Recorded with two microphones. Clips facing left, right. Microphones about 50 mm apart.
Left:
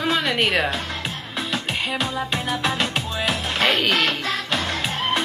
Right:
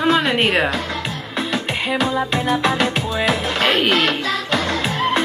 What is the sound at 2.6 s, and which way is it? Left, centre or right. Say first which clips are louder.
Music: right 5 dB; right.